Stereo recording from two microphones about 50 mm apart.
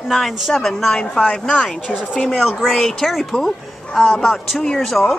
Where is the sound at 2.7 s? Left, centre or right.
Centre.